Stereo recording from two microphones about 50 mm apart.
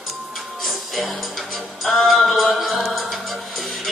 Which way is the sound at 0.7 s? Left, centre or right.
Centre.